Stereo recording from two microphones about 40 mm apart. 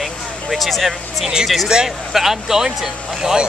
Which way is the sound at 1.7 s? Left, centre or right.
Centre.